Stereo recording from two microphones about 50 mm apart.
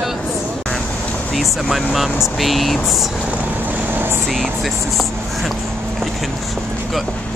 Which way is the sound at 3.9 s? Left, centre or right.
Right.